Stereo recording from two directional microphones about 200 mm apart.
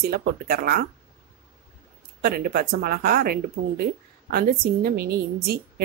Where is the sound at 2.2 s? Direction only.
50° right (ahead or behind).